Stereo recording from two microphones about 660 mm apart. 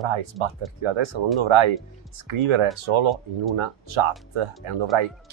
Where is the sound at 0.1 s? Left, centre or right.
Right.